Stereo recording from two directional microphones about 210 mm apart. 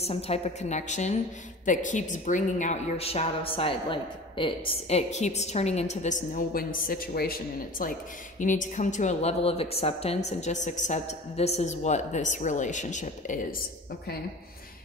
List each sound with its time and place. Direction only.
0.0 s a woman's voice: 30° left (ahead or behind)